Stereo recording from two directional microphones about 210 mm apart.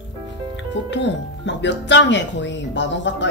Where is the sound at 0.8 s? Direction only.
60° left (ahead or behind).